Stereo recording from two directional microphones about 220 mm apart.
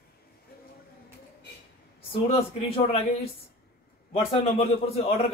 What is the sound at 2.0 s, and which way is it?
Speech, 25° left (ahead or behind).